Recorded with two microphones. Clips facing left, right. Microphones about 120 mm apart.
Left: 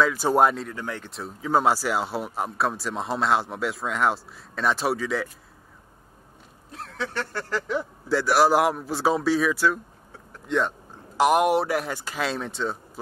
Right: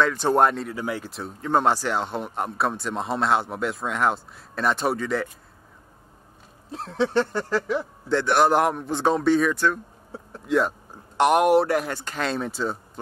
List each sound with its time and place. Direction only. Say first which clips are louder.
0.0 s speech: even; 5° left (ahead or behind)
0.7 s speech: right 4 dB; 10° right (ahead or behind)
6.7 s a sound: right 9 dB; 25° right (ahead or behind)
7.7 s speech: left 3 dB; 5° left (ahead or behind)